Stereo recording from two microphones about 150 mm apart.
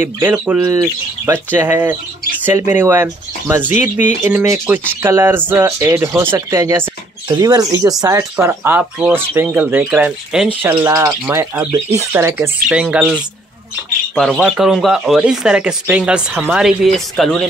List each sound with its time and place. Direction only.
0.2 s speech: 15° right (ahead or behind)
14.1 s speech: 5° left (ahead or behind)